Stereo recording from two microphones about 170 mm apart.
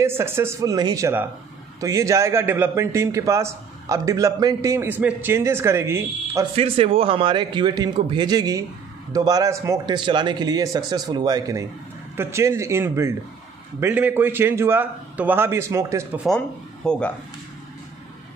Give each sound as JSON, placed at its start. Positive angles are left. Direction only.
{"t": 0.0, "sound": "a man's voice", "side_deg": -15}
{"t": 6.5, "sound": "a man's voice", "side_deg": -35}
{"t": 16.3, "sound": "speech", "side_deg": 5}